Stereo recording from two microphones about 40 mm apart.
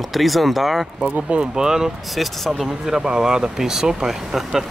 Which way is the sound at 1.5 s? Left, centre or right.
Centre.